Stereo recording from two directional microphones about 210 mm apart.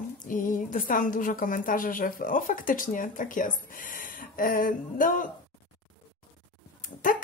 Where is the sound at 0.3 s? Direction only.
40° left (ahead or behind).